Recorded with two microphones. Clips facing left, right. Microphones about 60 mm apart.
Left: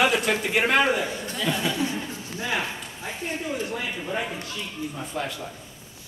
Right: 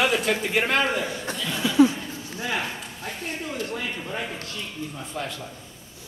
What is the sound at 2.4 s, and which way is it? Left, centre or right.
Speech, centre.